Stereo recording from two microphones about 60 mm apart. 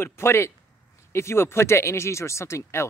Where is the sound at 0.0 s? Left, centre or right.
Left.